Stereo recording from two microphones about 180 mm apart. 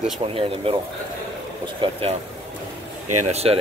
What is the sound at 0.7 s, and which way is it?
Speech, 30° right (ahead or behind).